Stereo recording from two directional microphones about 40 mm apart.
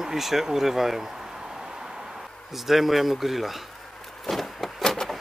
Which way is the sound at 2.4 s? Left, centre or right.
Centre.